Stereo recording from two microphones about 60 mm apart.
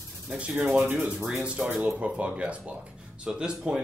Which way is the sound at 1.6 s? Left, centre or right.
Centre.